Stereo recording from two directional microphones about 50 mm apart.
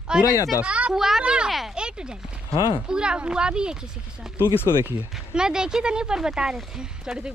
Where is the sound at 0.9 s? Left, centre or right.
Centre.